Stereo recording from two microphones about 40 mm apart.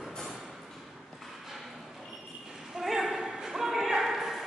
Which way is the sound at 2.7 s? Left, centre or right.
Centre.